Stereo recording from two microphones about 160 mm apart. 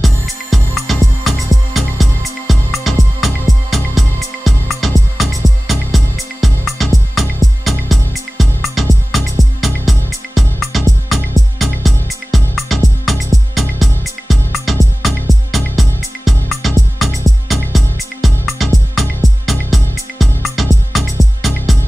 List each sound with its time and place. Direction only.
0.0 s music: centre (ahead or behind)